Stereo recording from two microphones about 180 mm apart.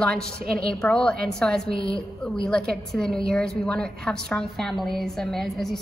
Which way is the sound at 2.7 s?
5° left (ahead or behind).